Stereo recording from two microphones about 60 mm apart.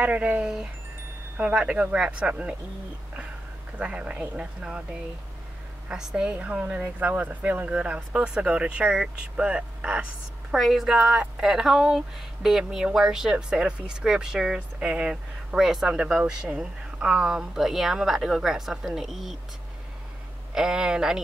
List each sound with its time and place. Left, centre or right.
0.0 s a woman's voice: right
3.7 s a woman's voice: centre
5.9 s a woman's voice: centre
10.5 s a woman's voice: centre
11.0 s speech: centre
11.4 s speech: centre
20.5 s speech: centre